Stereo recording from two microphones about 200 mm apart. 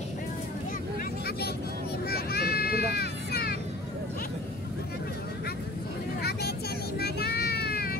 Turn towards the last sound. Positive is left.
turn(degrees=50)  # may be behind; listen again after turning